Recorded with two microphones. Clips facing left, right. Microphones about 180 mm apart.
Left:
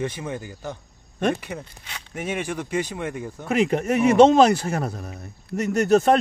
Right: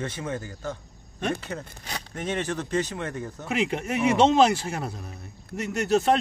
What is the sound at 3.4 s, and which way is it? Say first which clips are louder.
Speech: left 6 dB; 45° left (ahead or behind).